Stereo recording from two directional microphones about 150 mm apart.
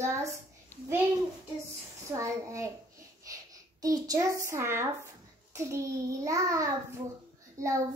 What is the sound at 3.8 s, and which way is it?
A child's voice, 25° right (ahead or behind).